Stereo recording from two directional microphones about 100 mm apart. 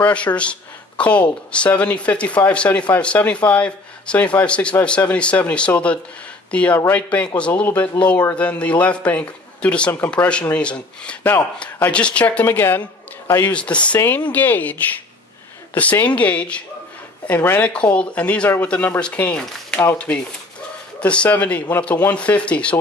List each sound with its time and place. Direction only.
0.0 s a woman's voice: 15° left (ahead or behind)
13.5 s speech: 10° left (ahead or behind)
13.9 s a woman's voice: 20° left (ahead or behind)
21.0 s speech: 15° left (ahead or behind)